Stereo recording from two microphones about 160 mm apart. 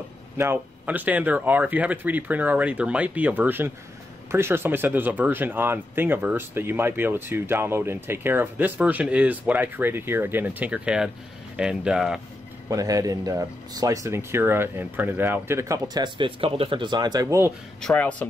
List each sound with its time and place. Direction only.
0.4 s speech: 15° right (ahead or behind)
12.6 s speech: 20° right (ahead or behind)
17.8 s speech: 10° left (ahead or behind)